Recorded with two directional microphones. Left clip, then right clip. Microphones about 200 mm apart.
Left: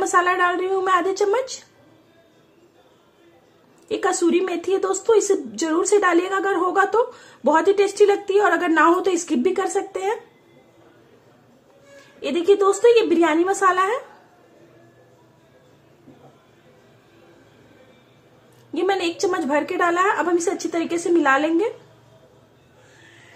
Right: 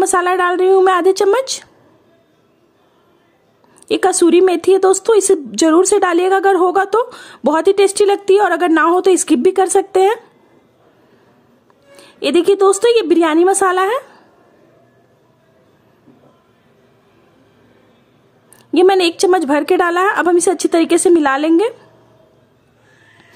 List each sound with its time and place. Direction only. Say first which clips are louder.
0.0 s a woman's voice: right 4 dB; 50° right (ahead or behind)
3.9 s a woman's voice: right 8 dB; 50° right (ahead or behind)
12.2 s a woman's voice: right 6 dB; 50° right (ahead or behind)
18.7 s a woman's voice: right 11 dB; 50° right (ahead or behind)